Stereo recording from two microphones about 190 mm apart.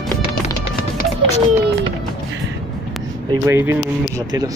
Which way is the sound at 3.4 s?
15° right (ahead or behind).